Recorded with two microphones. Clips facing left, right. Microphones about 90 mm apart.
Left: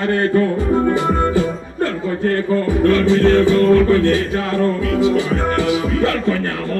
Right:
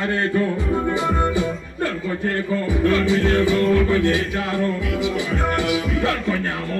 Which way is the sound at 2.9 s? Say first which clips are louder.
Left 5 dB; 15° right (ahead or behind).